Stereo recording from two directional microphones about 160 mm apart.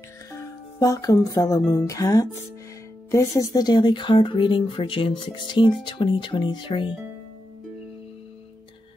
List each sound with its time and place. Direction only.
0.7 s speech: 20° left (ahead or behind)